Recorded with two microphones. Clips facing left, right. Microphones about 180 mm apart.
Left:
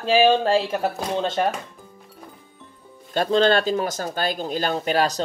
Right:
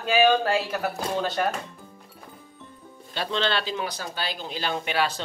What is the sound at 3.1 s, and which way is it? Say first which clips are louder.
Speech: left 9 dB; 45° left (ahead or behind).